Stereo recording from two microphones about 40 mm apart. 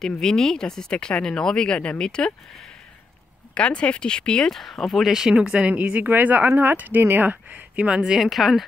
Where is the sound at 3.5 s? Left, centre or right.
Left.